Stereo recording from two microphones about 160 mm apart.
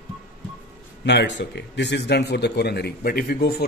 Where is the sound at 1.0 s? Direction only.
90° left.